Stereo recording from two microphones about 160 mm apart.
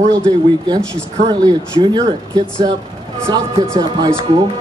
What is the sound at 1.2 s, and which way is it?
Speech, 25° right (ahead or behind).